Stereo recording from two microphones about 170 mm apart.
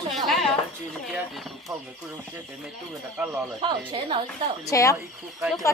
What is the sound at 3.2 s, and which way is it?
Speech, 5° right (ahead or behind).